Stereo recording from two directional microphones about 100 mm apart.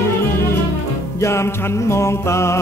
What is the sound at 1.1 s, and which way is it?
Mantra, 30° left (ahead or behind).